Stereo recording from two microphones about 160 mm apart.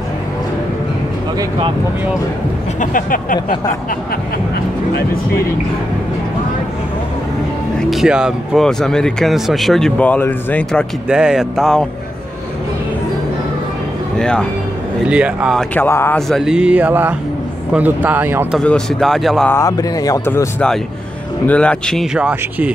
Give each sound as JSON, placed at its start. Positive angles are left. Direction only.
{"t": 2.8, "sound": "speech", "side_deg": 60}
{"t": 4.9, "sound": "speech", "side_deg": 75}
{"t": 7.9, "sound": "speech", "side_deg": -5}
{"t": 11.1, "sound": "speech", "side_deg": -5}
{"t": 14.1, "sound": "speech", "side_deg": 5}
{"t": 15.0, "sound": "speech", "side_deg": -5}
{"t": 15.7, "sound": "speech", "side_deg": 15}
{"t": 16.2, "sound": "speech", "side_deg": 0}
{"t": 18.6, "sound": "speech", "side_deg": 5}
{"t": 19.5, "sound": "speech", "side_deg": 20}
{"t": 21.5, "sound": "speech", "side_deg": 5}